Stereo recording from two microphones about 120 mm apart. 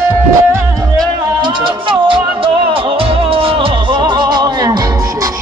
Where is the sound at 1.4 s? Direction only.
45° right (ahead or behind).